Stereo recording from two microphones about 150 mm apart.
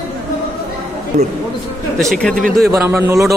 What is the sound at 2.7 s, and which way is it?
Speech, 20° right (ahead or behind).